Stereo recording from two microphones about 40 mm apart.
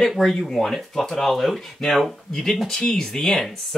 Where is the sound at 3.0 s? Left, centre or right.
Centre.